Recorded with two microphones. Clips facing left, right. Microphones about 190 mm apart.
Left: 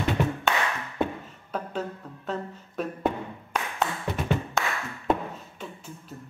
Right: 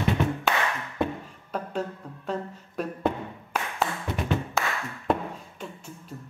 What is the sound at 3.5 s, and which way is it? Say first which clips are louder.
Tap: even; 5° right (ahead or behind).